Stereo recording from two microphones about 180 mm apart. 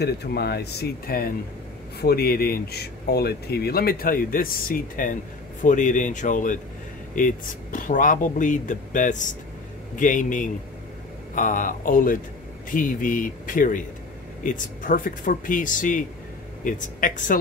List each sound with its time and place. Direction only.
0.0 s speech: 60° left (ahead or behind)